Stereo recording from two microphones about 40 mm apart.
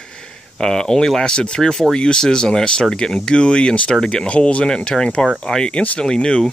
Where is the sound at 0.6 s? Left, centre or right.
Centre.